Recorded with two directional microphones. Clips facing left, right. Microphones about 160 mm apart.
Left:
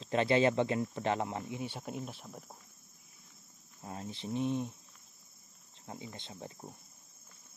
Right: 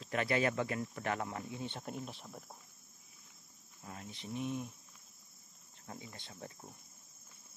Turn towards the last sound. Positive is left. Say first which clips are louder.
# left 3 dB
turn(degrees=25)  # may be behind; listen again after turning